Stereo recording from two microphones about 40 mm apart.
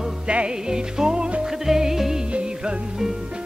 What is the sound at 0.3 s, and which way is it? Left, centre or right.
Music, right.